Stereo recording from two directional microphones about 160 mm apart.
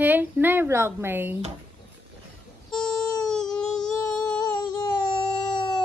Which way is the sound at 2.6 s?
5° left (ahead or behind).